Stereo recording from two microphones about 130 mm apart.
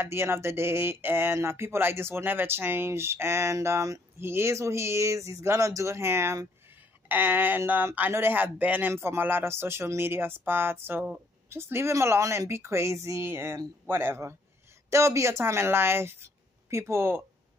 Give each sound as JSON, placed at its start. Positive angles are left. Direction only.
{"t": 0.0, "sound": "speech", "side_deg": -20}